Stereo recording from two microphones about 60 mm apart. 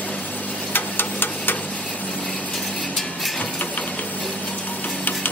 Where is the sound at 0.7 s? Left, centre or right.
Left.